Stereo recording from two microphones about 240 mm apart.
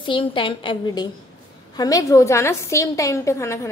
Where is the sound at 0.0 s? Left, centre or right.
Left.